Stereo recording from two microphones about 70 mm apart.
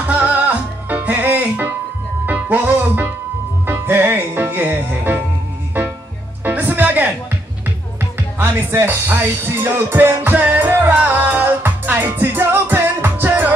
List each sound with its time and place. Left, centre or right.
0.0 s music: right